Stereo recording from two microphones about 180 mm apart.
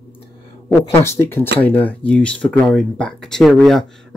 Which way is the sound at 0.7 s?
15° left (ahead or behind).